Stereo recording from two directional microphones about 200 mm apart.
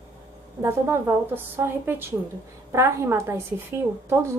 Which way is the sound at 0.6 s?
10° right (ahead or behind).